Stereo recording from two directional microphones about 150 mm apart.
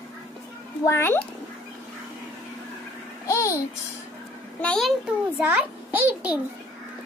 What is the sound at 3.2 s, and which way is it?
Babbling, 20° left (ahead or behind).